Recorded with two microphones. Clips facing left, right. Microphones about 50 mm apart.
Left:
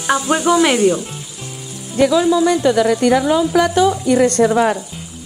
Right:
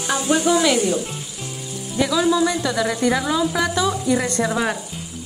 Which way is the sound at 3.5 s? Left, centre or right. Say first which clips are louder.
Left 7 dB; left.